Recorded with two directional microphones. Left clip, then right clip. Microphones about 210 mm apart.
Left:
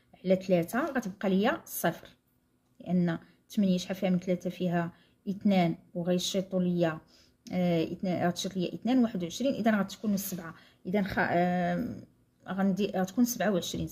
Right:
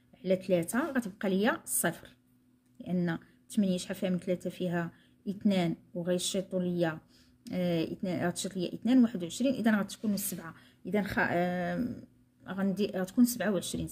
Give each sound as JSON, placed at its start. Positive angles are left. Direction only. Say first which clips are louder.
{"t": 0.1, "sound": "speech", "louder": "left 2 dB", "side_deg": -10}